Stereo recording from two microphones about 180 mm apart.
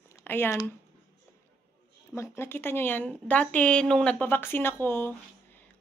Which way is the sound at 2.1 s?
15° left (ahead or behind).